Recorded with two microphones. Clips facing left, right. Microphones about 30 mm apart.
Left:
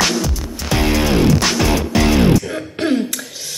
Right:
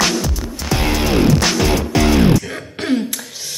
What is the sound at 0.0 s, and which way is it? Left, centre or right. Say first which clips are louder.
Music: even; centre.